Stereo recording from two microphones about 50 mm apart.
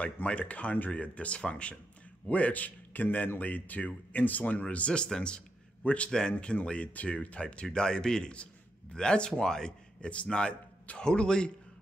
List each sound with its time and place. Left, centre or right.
0.0 s a man's voice: left